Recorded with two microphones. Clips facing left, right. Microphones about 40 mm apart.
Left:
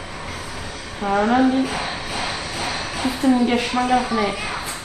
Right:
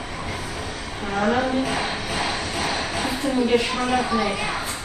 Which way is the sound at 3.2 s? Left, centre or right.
Left.